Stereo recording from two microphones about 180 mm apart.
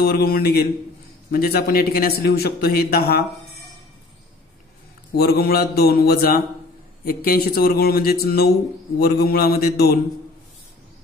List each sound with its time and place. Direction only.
0.0 s a man's voice: 60° left (ahead or behind)
5.1 s a man's voice: 60° left (ahead or behind)